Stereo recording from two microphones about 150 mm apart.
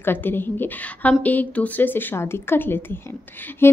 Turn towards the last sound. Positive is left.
turn(degrees=15)  # may be behind; listen again after turning